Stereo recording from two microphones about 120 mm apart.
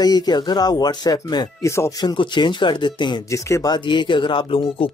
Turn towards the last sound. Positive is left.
turn(degrees=45)  # may be behind; listen again after turning